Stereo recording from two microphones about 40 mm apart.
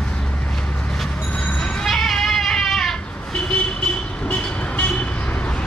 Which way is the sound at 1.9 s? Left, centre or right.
Centre.